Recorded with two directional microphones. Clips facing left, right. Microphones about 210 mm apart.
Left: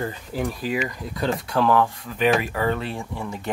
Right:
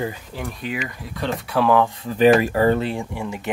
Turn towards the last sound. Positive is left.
turn(degrees=-10)  # may be behind; listen again after turning